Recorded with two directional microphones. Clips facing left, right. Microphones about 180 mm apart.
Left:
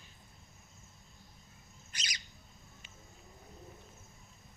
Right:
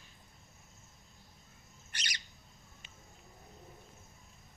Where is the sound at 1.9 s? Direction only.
60° right (ahead or behind).